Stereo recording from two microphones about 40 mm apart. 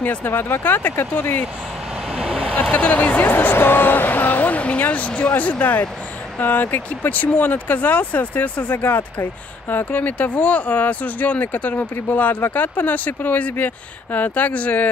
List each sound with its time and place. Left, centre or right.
0.0 s speech: left
0.3 s speech: left
2.1 s vehicle: centre
2.7 s speech: left
3.3 s a sound: left
5.3 s speech: left